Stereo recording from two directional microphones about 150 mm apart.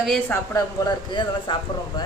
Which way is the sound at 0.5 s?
30° left (ahead or behind).